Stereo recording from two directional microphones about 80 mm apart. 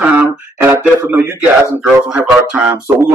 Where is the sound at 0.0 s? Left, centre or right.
Centre.